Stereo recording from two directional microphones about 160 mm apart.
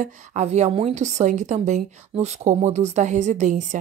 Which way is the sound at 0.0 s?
45° right (ahead or behind).